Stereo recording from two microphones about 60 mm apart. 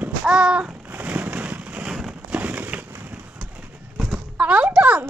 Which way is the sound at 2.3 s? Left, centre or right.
Right.